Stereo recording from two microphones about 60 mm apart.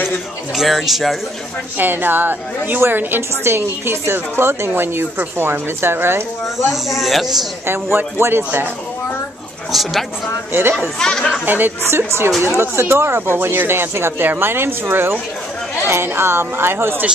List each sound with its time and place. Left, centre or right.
0.6 s speech: centre
1.8 s a woman's voice: right
6.7 s speech: centre
7.6 s a woman's voice: right
9.7 s speech: centre
10.5 s a woman's voice: right
11.0 s speech: centre
11.4 s a woman's voice: right
12.4 s a woman's voice: right